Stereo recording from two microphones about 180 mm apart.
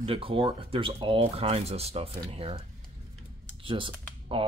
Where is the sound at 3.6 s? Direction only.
30° right (ahead or behind).